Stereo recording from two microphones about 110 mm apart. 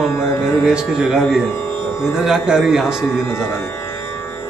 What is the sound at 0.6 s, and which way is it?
Speech, 5° right (ahead or behind).